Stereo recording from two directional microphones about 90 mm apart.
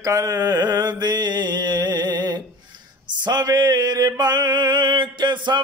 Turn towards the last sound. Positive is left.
turn(degrees=-60)  # may be behind; listen again after turning